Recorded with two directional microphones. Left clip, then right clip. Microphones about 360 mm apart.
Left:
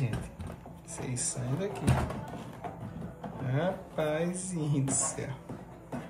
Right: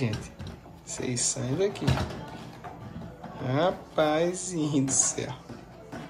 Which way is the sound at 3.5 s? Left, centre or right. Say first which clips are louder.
Right 7 dB; centre.